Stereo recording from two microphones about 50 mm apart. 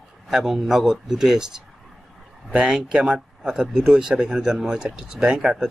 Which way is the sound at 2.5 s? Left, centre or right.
Centre.